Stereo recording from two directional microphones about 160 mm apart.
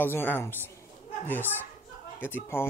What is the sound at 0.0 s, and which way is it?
Speech, 10° left (ahead or behind).